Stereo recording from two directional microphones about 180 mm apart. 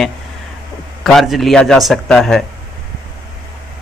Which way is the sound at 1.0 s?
Centre (ahead or behind).